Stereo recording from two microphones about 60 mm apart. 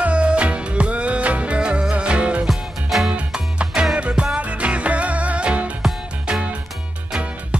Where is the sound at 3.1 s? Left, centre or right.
Centre.